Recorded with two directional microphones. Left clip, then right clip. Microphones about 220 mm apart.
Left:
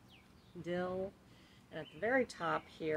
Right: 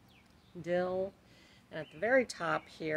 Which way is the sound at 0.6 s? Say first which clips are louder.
Right 6 dB; 40° right (ahead or behind).